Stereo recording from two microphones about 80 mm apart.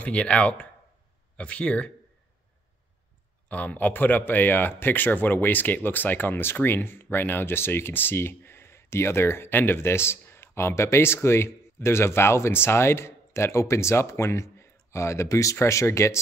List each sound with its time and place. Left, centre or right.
0.0 s speech: centre
3.4 s a man's voice: centre; by 16.2 s left